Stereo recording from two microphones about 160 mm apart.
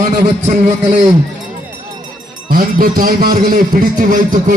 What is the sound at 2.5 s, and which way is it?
A man's voice, 65° right (ahead or behind).